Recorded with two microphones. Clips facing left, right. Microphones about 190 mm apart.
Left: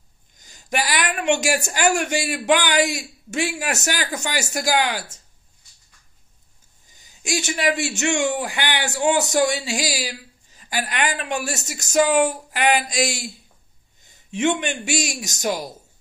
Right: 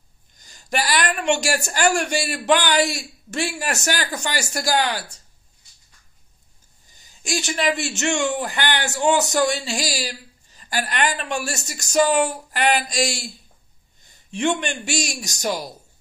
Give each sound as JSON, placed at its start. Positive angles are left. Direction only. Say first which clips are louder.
{"t": 0.4, "sound": "a man's voice", "louder": "even", "side_deg": 20}
{"t": 6.9, "sound": "a man's voice", "louder": "left 1 dB", "side_deg": 20}
{"t": 9.9, "sound": "a sound", "louder": "even", "side_deg": 15}
{"t": 10.9, "sound": "a man's voice", "louder": "right 1 dB", "side_deg": 10}